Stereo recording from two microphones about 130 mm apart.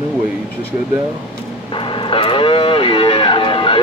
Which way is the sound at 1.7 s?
40° left (ahead or behind).